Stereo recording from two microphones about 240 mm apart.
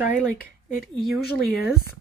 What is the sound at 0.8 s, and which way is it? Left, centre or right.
Speech, centre.